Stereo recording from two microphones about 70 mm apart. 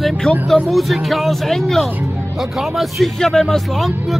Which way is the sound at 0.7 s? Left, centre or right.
Centre.